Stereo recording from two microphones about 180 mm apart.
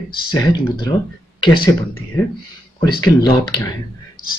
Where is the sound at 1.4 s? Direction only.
25° left (ahead or behind).